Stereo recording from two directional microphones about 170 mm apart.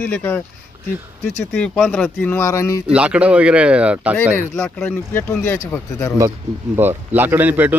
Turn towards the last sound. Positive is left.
turn(degrees=-10)  # may be behind; listen again after turning